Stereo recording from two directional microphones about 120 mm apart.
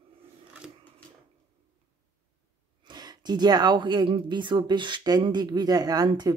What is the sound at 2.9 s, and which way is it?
Speech, 35° right (ahead or behind).